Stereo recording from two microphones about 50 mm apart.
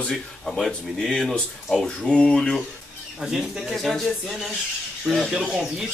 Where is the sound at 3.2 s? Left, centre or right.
Centre.